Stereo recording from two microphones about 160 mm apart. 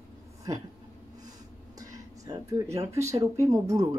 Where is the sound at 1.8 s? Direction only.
20° right (ahead or behind).